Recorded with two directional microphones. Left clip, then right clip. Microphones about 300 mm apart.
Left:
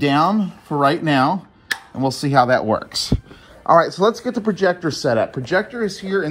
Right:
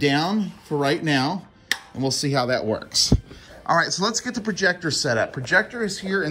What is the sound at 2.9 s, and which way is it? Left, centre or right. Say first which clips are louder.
Speech: right 3 dB; centre.